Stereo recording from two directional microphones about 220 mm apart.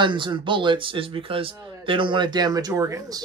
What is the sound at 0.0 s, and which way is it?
Speech, 20° right (ahead or behind).